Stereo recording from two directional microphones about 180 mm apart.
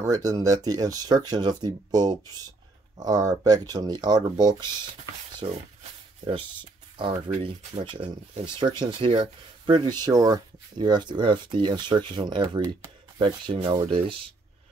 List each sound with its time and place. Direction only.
0.0 s speech: 20° right (ahead or behind)